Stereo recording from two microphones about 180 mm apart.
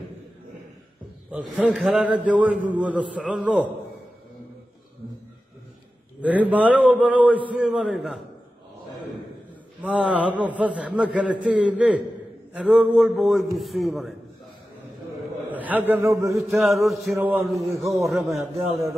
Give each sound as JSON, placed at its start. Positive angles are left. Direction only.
{"t": 1.3, "sound": "a man's voice", "side_deg": -5}
{"t": 6.2, "sound": "a man's voice", "side_deg": -10}
{"t": 9.8, "sound": "a man's voice", "side_deg": -5}
{"t": 15.5, "sound": "a sound", "side_deg": -10}
{"t": 15.9, "sound": "a man's voice", "side_deg": -15}
{"t": 16.3, "sound": "a man's voice", "side_deg": 0}